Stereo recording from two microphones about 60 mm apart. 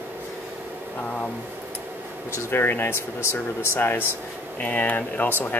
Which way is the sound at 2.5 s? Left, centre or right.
Left.